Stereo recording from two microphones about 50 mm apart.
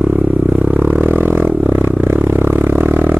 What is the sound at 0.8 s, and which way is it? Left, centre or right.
Music, right.